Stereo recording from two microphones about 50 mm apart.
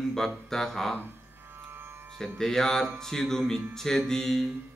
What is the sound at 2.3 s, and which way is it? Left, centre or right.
Music, centre.